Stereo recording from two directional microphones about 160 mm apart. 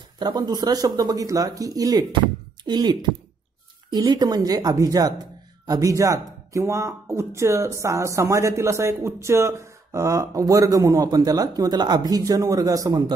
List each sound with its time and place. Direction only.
0.2 s speech: 25° right (ahead or behind)